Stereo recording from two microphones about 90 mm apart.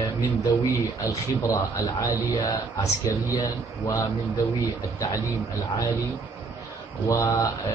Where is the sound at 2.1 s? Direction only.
50° left (ahead or behind).